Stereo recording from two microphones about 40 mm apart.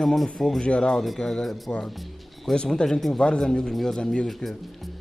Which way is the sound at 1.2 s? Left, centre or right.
Centre.